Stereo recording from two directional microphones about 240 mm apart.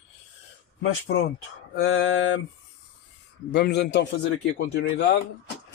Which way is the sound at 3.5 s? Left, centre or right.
Left.